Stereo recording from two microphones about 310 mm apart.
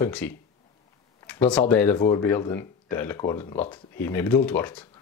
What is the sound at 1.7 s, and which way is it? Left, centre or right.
Speech, left.